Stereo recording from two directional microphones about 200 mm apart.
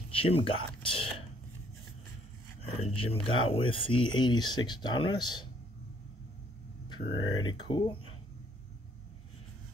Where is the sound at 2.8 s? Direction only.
30° left (ahead or behind).